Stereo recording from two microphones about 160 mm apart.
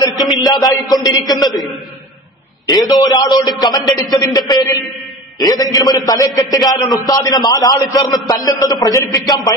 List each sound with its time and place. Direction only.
0.0 s a man's voice: 25° left (ahead or behind)
2.9 s speech: 25° left (ahead or behind)